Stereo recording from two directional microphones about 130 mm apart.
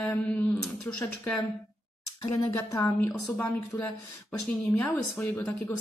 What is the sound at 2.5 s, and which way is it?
Speech, 25° left (ahead or behind).